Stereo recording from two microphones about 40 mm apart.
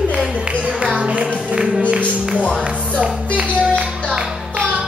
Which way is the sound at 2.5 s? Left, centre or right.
Right.